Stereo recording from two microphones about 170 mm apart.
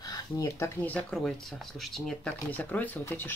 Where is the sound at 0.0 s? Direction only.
20° left (ahead or behind).